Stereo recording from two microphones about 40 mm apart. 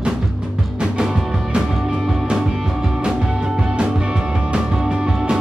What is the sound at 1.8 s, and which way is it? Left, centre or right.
Music, centre.